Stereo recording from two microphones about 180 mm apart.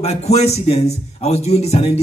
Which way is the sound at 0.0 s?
35° left (ahead or behind).